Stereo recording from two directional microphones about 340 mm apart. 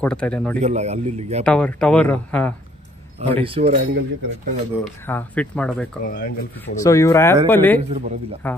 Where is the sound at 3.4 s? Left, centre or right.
Centre.